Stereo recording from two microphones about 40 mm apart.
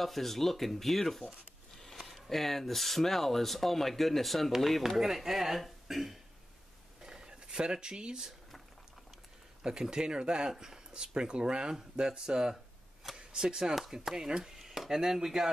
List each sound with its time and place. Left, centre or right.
0.0 s speech: centre
7.0 s a sound: centre
9.6 s speech: centre